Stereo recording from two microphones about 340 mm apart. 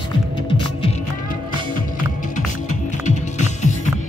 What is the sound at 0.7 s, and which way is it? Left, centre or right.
Music, centre.